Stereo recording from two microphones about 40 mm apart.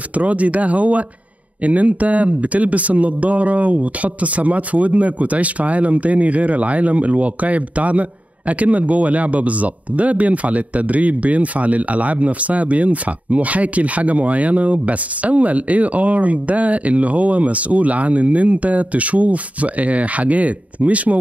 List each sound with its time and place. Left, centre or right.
0.1 s speech: right